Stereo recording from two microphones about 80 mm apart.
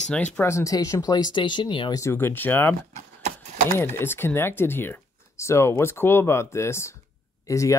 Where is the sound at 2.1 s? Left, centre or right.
Left.